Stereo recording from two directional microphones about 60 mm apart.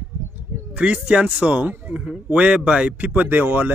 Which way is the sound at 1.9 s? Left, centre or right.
Centre.